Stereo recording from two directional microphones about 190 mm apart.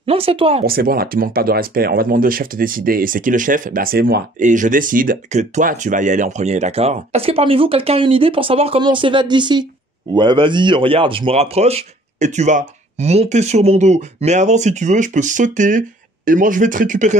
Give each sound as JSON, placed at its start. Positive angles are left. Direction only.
{"t": 0.0, "sound": "speech", "side_deg": -30}
{"t": 0.7, "sound": "speech", "side_deg": -50}